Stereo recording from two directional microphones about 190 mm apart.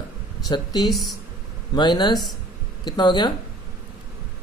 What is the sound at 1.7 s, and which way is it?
Speech, 25° left (ahead or behind).